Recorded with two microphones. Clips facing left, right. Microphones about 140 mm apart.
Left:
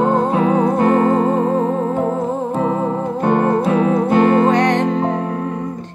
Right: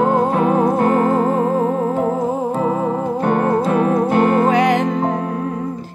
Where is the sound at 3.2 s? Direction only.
20° left (ahead or behind).